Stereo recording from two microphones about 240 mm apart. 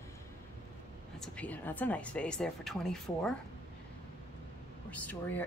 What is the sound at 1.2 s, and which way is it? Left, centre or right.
A woman's voice, centre.